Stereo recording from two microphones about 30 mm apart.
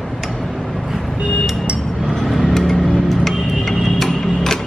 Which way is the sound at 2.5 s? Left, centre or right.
Centre.